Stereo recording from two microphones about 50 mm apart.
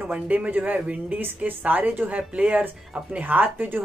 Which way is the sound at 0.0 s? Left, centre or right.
Right.